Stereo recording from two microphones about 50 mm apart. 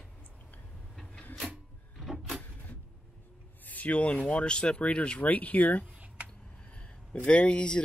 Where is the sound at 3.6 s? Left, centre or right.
Left.